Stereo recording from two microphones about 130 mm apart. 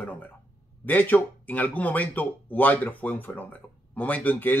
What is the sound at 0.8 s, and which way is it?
A man's voice, 15° left (ahead or behind).